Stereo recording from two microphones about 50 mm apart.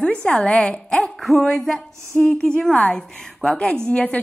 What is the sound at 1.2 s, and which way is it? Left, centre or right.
Music, centre.